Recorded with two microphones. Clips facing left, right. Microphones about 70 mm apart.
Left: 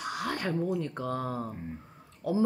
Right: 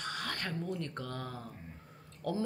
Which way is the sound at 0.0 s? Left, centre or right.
Centre.